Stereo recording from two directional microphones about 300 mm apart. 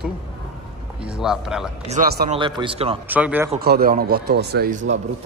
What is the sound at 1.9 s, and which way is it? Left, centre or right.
Speech, right.